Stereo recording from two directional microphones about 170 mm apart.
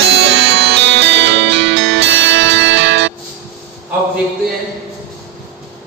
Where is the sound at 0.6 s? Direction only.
90° right.